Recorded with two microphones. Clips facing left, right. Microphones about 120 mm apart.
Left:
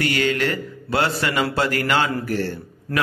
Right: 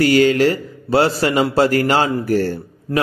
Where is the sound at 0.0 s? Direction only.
35° right (ahead or behind).